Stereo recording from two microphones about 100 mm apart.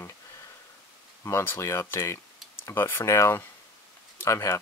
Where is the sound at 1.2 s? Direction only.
25° left (ahead or behind).